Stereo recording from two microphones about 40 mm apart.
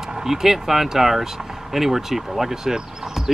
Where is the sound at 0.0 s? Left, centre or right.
Centre.